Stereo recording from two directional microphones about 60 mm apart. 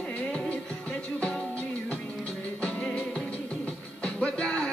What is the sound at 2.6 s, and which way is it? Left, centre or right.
Music, centre.